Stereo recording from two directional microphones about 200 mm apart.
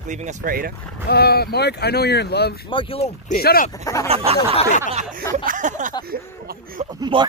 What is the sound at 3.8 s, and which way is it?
Speech, 15° left (ahead or behind).